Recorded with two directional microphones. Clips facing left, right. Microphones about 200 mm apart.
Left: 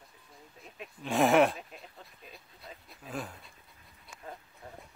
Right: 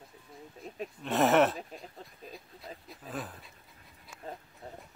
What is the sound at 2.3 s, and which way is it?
Dog, centre (ahead or behind).